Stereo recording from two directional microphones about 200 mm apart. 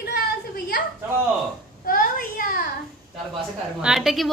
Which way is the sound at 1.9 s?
45° left (ahead or behind).